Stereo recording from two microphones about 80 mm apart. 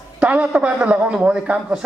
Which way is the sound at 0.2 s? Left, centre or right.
Centre.